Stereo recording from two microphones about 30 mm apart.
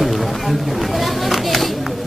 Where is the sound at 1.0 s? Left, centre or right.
Centre.